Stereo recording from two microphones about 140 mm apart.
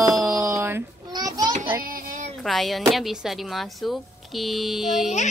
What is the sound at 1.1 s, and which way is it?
Children playing, 30° right (ahead or behind).